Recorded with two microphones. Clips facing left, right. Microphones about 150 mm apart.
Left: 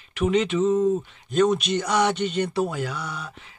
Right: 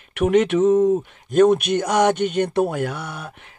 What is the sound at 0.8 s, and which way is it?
Speech, 50° right (ahead or behind).